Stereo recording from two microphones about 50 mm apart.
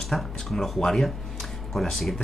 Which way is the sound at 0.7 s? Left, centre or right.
Centre.